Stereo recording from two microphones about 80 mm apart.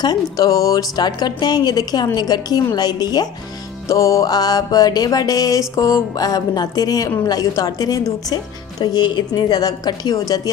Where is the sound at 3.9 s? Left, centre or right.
Left.